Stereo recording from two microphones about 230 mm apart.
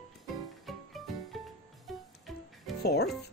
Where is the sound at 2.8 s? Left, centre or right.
Left.